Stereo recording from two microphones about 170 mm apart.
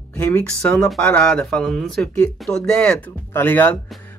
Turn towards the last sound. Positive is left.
turn(degrees=10)  # may be behind; listen again after turning